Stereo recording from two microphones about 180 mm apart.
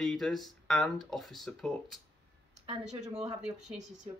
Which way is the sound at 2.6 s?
35° right (ahead or behind).